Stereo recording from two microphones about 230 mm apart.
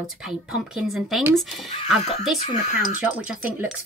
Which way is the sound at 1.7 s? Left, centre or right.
Left.